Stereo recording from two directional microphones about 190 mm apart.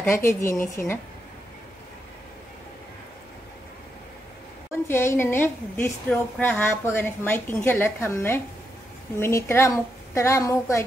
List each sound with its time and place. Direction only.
0.0 s a woman's voice: 15° left (ahead or behind)
4.8 s a woman's voice: 15° left (ahead or behind)